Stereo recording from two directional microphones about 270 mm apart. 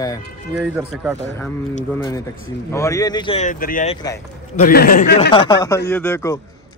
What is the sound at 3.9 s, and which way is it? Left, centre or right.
Speech, centre.